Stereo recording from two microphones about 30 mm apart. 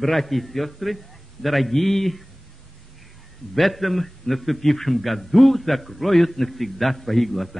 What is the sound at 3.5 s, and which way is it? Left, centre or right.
A man's voice, centre.